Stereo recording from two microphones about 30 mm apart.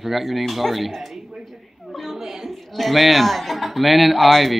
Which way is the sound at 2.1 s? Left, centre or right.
Centre.